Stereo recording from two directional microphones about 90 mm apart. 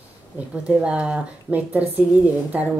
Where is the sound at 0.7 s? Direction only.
15° right (ahead or behind).